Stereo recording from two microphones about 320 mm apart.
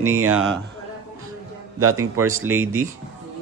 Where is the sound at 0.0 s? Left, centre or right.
Right.